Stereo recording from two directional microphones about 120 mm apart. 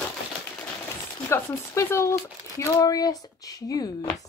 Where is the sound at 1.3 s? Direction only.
20° left (ahead or behind).